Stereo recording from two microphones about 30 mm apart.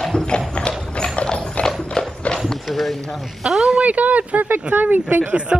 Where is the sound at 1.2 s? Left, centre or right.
Left.